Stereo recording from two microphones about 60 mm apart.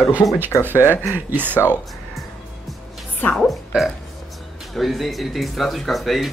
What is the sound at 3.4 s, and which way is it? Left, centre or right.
Speech, centre.